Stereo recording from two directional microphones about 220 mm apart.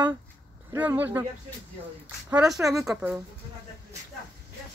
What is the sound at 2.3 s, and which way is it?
Speech, 10° right (ahead or behind).